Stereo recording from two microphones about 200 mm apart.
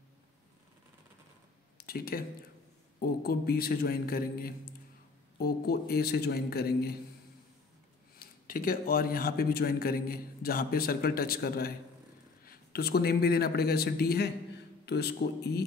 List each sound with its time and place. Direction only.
1.8 s a man's voice: 50° left (ahead or behind)
8.2 s a man's voice: 45° left (ahead or behind)